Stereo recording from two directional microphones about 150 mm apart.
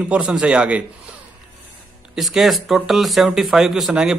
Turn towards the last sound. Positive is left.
turn(degrees=-5)  # may be behind; listen again after turning